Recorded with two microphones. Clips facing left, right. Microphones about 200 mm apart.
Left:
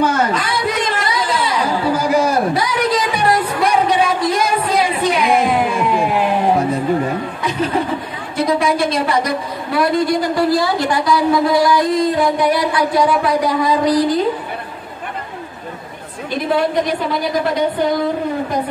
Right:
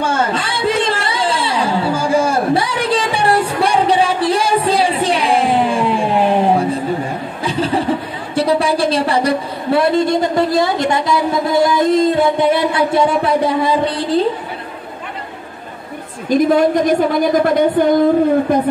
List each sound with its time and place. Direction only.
0.0 s chatter: 25° right (ahead or behind)
7.4 s chuckle: 30° right (ahead or behind)
8.4 s a woman's voice: 30° right (ahead or behind)
16.3 s a woman's voice: 45° right (ahead or behind)